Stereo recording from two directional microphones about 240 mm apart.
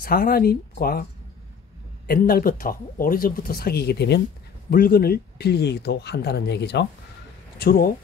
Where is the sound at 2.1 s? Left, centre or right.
Left.